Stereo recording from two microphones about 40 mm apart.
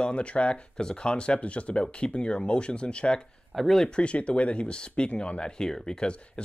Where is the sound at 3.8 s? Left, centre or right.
Left.